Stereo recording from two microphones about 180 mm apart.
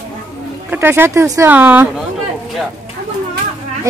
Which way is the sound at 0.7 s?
10° right (ahead or behind).